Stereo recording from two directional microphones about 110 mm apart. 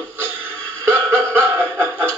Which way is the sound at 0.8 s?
20° right (ahead or behind).